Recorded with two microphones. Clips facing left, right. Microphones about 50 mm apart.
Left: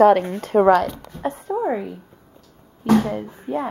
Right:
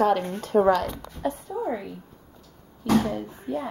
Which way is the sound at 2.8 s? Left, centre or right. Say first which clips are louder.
Left 5 dB; left.